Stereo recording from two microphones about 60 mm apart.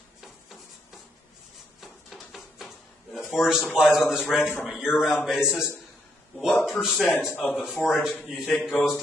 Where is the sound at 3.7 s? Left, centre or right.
Centre.